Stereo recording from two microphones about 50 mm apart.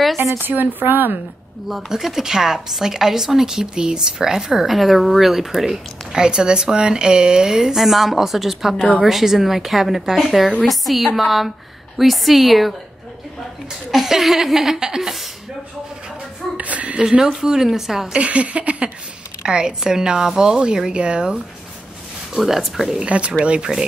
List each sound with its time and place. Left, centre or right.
0.7 s a woman's voice: right
1.9 s speech: centre
6.1 s a woman's voice: centre
16.5 s a sound: right
17.0 s speech: centre
18.1 s a woman's voice: right
22.4 s a woman's voice: centre
23.0 s a woman's voice: right